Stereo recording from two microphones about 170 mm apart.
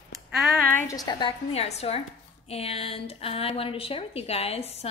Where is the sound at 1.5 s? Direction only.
40° left (ahead or behind).